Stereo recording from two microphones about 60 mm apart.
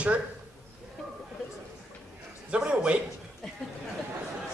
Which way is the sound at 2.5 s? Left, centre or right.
Centre.